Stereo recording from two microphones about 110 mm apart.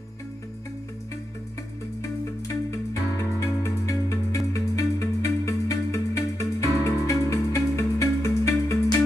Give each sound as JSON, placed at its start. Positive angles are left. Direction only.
{"t": 2.0, "sound": "music", "side_deg": 30}